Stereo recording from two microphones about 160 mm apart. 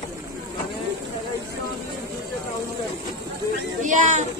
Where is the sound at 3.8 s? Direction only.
50° right (ahead or behind).